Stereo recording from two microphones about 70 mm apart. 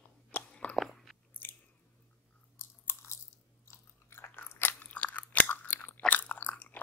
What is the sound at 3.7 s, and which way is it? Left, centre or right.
Biting, left.